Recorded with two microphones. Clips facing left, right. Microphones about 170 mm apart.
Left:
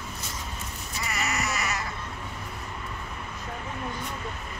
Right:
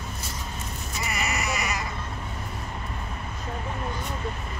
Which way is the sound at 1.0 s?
15° right (ahead or behind).